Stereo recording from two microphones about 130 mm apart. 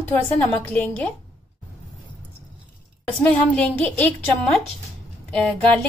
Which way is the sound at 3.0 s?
10° left (ahead or behind).